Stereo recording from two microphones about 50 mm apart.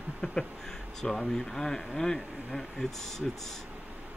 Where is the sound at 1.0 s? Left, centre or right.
Centre.